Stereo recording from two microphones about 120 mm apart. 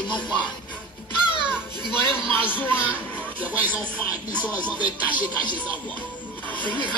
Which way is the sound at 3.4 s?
15° right (ahead or behind).